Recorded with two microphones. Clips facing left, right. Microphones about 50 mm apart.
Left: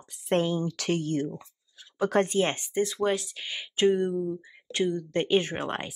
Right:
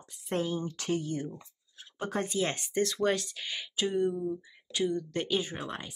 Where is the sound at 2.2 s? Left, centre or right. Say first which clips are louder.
Left 5 dB; left.